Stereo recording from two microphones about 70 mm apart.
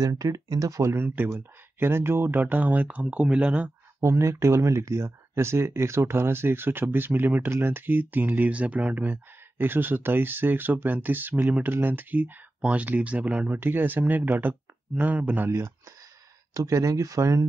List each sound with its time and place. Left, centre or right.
0.0 s speech: right
0.9 s speech: right
4.0 s speech: right; by 13.5 s centre
13.5 s speech: right
15.4 s speech: right
16.5 s speech: right